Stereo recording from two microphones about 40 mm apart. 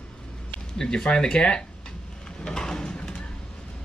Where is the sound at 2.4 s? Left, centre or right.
Centre.